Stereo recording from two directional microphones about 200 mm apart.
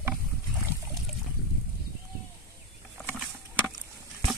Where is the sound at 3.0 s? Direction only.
5° left (ahead or behind).